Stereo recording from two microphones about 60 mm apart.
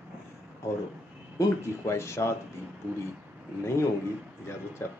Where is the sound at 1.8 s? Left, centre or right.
Left.